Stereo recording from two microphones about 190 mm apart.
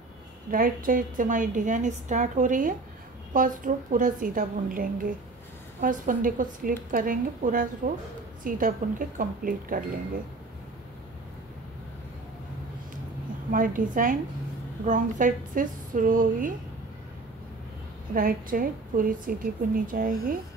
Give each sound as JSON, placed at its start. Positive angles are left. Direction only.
{"t": 0.5, "sound": "a woman's voice", "side_deg": -45}
{"t": 13.5, "sound": "a woman's voice", "side_deg": -45}
{"t": 18.1, "sound": "a woman's voice", "side_deg": -50}